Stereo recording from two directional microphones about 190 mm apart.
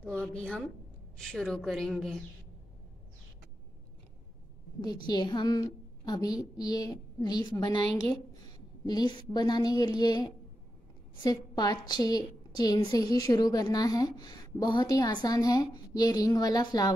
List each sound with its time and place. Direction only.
0.0 s a woman's voice: 5° left (ahead or behind)
4.8 s a woman's voice: 20° left (ahead or behind)